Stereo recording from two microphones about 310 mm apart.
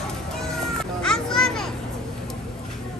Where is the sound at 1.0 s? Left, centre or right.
Centre.